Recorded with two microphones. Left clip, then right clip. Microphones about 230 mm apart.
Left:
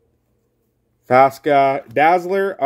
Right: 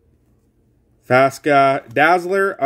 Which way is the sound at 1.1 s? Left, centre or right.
Centre.